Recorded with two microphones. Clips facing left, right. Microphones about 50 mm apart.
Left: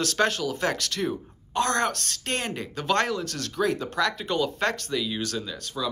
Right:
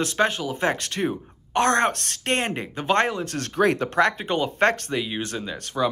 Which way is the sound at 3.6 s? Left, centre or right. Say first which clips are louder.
Right 5 dB; right.